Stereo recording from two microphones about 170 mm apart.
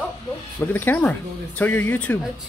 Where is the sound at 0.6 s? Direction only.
10° left (ahead or behind).